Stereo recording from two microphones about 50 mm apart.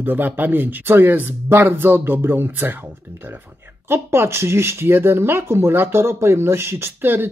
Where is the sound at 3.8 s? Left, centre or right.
Right.